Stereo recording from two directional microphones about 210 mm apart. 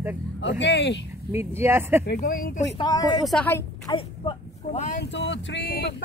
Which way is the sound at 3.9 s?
25° left (ahead or behind).